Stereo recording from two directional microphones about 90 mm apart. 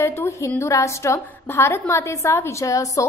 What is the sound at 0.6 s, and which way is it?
A woman's voice, 35° left (ahead or behind).